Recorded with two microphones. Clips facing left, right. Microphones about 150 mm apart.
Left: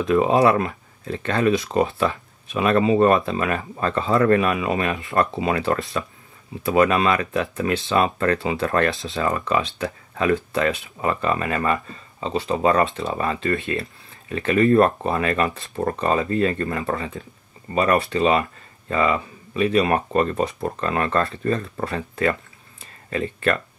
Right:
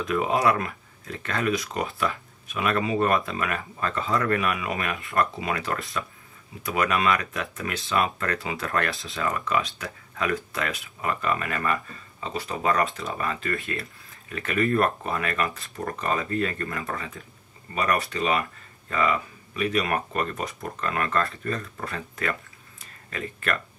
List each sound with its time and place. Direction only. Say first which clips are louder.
0.0 s speech: left 6 dB; 30° left (ahead or behind)